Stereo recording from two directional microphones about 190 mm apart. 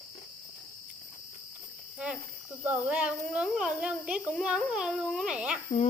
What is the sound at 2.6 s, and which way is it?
A child's voice, 10° right (ahead or behind).